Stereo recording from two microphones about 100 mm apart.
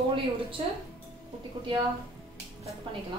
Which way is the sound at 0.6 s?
70° right (ahead or behind).